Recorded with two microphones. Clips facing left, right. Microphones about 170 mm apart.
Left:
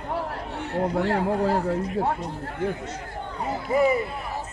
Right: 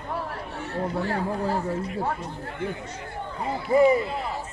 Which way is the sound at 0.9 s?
60° left (ahead or behind).